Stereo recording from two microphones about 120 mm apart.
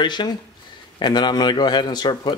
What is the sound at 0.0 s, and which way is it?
Speech, 40° left (ahead or behind).